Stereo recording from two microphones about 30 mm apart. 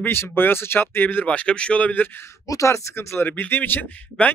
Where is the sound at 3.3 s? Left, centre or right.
Left.